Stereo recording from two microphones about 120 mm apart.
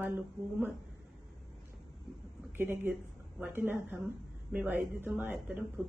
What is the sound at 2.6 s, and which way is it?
A woman's voice, 20° right (ahead or behind).